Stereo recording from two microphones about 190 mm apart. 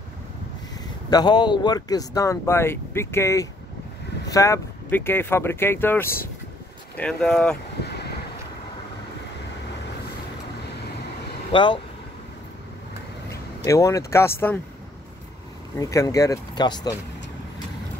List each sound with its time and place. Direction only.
1.1 s speech: 20° left (ahead or behind); by 7.5 s 5° left (ahead or behind)
7.8 s boat: 60° left (ahead or behind)
11.5 s speech: 25° left (ahead or behind)
13.7 s speech: 15° left (ahead or behind)
15.8 s speech: 15° left (ahead or behind)